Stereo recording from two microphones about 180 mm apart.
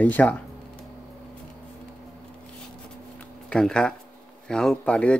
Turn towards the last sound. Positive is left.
turn(degrees=5)  # may be behind; listen again after turning